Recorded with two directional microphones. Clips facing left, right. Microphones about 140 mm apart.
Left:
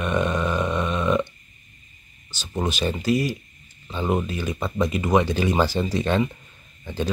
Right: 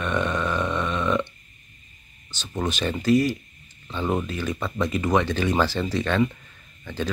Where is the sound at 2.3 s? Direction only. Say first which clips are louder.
Left 1 dB; 10° left (ahead or behind).